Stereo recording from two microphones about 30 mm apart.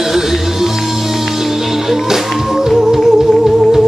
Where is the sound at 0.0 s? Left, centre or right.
Centre.